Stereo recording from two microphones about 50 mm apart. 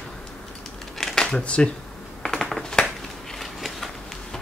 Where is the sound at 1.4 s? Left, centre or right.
Left.